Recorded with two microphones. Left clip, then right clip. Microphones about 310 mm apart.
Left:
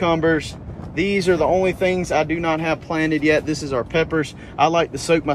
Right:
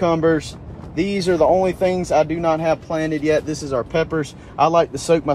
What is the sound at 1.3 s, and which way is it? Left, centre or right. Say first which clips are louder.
Speech: right 5 dB; centre.